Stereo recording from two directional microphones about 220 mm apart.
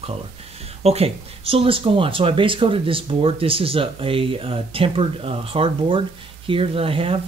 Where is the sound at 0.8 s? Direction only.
25° right (ahead or behind).